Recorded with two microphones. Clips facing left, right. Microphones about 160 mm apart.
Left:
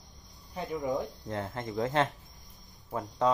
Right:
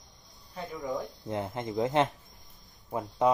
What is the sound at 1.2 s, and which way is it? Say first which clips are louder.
Speech: right 2 dB; 20° right (ahead or behind).